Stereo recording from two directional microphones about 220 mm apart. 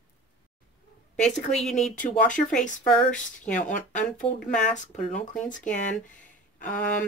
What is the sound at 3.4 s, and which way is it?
Speech, 35° left (ahead or behind).